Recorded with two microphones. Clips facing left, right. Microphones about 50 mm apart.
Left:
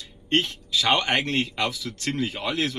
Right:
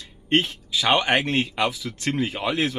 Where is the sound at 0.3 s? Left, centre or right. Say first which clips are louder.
Right 2 dB; centre.